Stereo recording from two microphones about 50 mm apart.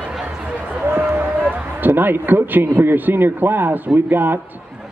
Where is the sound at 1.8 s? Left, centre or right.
Right.